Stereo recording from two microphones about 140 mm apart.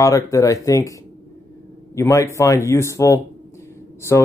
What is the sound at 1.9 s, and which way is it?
Speech, 20° left (ahead or behind).